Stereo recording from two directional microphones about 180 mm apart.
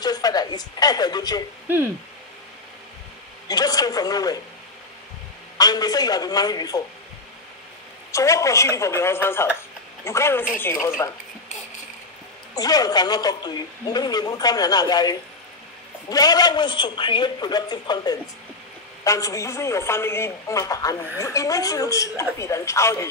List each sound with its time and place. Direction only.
0.0 s a woman's voice: 20° left (ahead or behind)
3.4 s speech: 20° left (ahead or behind)
5.6 s speech: 20° left (ahead or behind)
8.1 s a man's voice: 15° left (ahead or behind)
12.5 s a man's voice: 20° left (ahead or behind)